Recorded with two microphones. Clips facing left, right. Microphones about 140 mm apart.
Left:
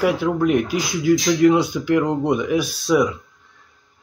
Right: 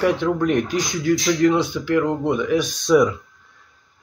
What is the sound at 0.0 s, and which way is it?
A man's voice, 10° left (ahead or behind).